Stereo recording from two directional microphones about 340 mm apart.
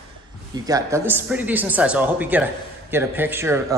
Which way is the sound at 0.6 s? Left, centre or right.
Centre.